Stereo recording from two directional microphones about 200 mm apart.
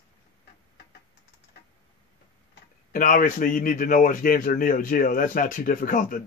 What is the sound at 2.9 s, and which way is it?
A man's voice, 40° left (ahead or behind).